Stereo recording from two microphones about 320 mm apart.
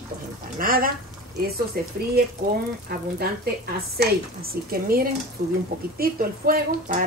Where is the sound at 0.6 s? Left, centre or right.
Right.